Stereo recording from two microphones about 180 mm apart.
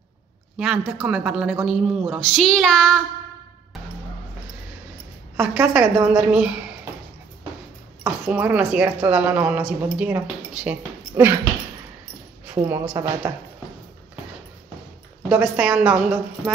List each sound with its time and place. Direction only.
0.6 s a man's voice: 5° right (ahead or behind)
5.4 s a man's voice: 5° right (ahead or behind)
8.0 s speech: 10° right (ahead or behind)
12.4 s a woman's voice: 10° right (ahead or behind)
15.2 s a man's voice: 5° right (ahead or behind)